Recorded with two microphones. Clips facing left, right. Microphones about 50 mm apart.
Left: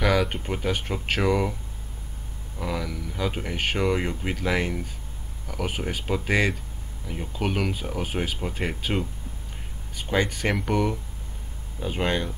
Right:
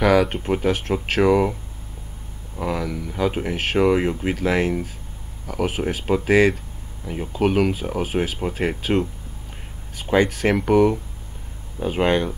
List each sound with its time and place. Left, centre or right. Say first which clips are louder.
0.0 s speech: right 6 dB; centre